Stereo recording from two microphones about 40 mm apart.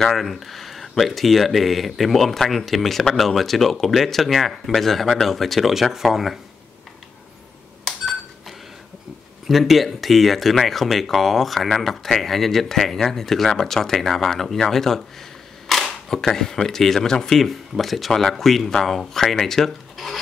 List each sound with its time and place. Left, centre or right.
0.0 s speech: centre
7.8 s a sound: centre
9.5 s speech: centre